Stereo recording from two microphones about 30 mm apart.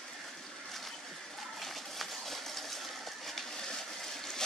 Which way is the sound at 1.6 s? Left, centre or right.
Centre.